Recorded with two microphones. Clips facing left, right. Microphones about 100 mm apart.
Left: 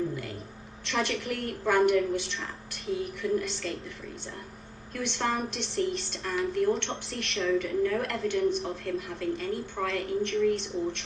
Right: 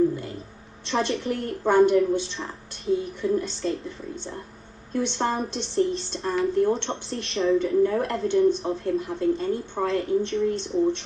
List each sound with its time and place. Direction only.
0.8 s a woman's voice: 30° right (ahead or behind)